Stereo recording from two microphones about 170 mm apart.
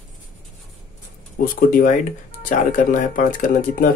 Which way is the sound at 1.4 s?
55° left (ahead or behind).